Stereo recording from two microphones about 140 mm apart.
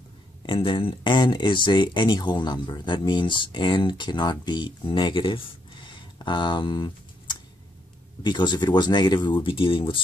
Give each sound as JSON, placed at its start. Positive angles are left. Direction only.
{"t": 0.5, "sound": "speech", "side_deg": 35}
{"t": 5.9, "sound": "a sound", "side_deg": 35}
{"t": 8.2, "sound": "speech", "side_deg": 30}